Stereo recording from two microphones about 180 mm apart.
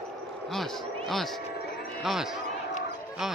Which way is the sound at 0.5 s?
Centre (ahead or behind).